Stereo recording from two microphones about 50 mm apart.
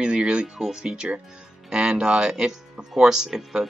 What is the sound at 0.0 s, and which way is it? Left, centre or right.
Music, centre.